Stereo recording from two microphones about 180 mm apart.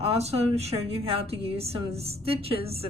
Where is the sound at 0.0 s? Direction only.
35° right (ahead or behind).